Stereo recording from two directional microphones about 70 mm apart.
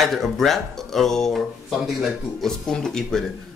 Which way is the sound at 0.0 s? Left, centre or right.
Centre.